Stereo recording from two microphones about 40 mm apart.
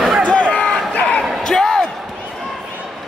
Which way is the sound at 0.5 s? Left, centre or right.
Left.